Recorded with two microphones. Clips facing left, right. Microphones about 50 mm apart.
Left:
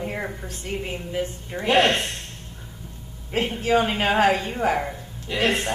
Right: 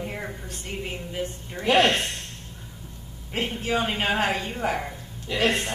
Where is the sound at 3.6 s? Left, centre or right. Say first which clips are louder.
Left 5 dB; left.